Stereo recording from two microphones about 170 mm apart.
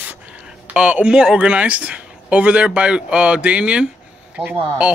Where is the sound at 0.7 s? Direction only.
10° right (ahead or behind).